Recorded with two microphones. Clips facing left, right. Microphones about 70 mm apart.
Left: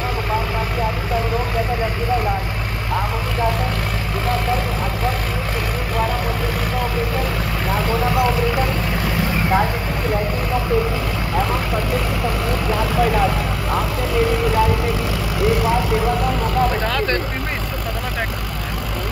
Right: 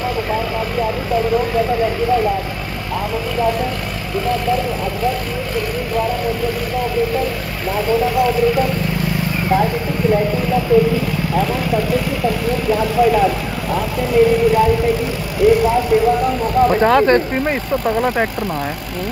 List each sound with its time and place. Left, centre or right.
16.8 s vehicle: right